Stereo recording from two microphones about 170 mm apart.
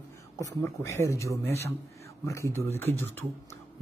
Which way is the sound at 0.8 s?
15° left (ahead or behind).